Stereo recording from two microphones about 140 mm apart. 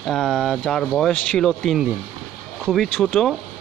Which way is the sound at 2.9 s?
5° left (ahead or behind).